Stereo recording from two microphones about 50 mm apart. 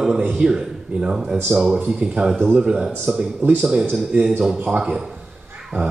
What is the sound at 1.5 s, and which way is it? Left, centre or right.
Speech, right.